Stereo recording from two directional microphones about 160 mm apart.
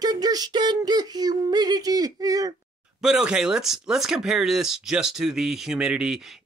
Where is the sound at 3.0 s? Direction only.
5° right (ahead or behind).